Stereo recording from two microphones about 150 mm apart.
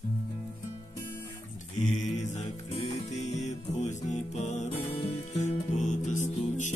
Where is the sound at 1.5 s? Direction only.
55° left (ahead or behind).